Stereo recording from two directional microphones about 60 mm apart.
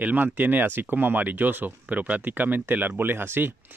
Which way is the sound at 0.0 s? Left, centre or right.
Right.